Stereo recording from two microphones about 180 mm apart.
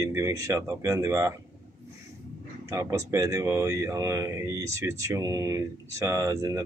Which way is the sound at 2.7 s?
15° right (ahead or behind).